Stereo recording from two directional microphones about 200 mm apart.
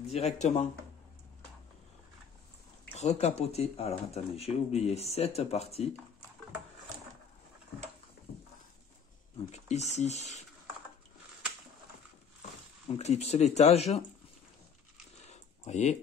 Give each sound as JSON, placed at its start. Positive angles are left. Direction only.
{"t": 0.0, "sound": "speech", "side_deg": 35}
{"t": 3.0, "sound": "speech", "side_deg": 35}
{"t": 9.5, "sound": "speech", "side_deg": 35}
{"t": 12.9, "sound": "speech", "side_deg": 35}
{"t": 15.2, "sound": "a sound", "side_deg": 35}